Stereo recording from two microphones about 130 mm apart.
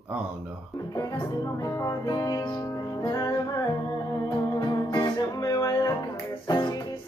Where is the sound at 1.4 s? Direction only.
25° left (ahead or behind).